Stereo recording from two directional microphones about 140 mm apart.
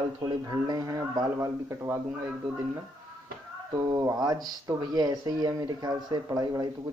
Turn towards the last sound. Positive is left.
turn(degrees=-25)  # may be behind; listen again after turning